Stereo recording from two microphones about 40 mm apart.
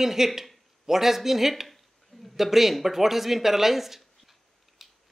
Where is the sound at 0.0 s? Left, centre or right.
Centre.